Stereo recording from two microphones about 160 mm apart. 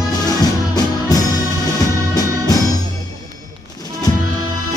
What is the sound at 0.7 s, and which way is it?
Music, 25° left (ahead or behind).